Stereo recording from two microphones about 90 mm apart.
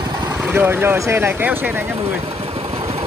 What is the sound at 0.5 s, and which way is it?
Speech, 25° right (ahead or behind).